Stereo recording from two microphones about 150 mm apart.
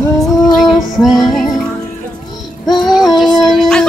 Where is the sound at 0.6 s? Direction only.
Centre (ahead or behind).